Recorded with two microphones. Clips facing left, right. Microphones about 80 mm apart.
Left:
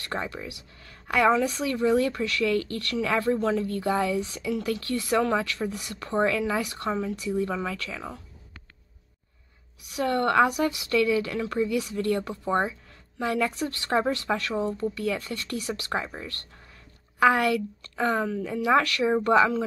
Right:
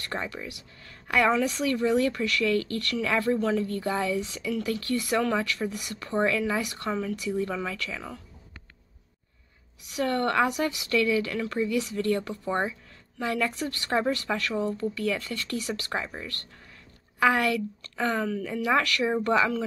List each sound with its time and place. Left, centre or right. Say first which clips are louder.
0.1 s a woman's voice: left 2 dB; left
3.8 s a woman's voice: left 2 dB; left
9.9 s a woman's voice: left 3 dB; left
11.7 s a woman's voice: even; left
17.2 s a woman's voice: left 2 dB; left